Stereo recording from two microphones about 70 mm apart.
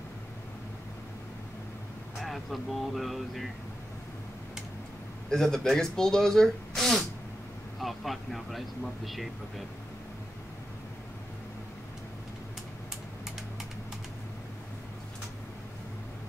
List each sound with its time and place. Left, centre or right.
2.1 s speech: centre
5.3 s speech: centre